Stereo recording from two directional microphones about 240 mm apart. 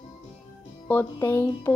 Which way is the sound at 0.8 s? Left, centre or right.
Centre.